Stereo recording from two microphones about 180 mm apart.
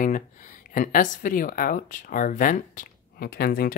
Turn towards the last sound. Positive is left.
turn(degrees=55)  # may be behind; listen again after turning